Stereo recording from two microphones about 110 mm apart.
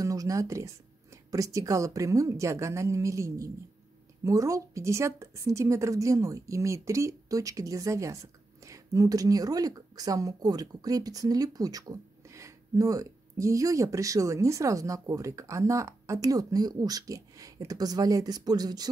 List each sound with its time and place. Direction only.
0.0 s a woman's voice: 30° right (ahead or behind)